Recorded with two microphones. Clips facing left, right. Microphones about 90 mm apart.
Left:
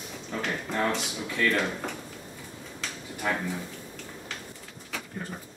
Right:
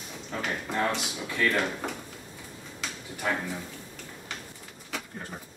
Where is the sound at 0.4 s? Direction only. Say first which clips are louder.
Even; 5° right (ahead or behind).